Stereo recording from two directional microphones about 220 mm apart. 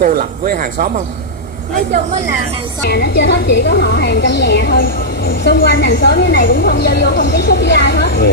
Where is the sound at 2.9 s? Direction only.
50° left (ahead or behind).